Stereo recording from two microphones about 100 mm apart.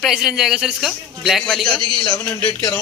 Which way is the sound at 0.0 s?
5° right (ahead or behind).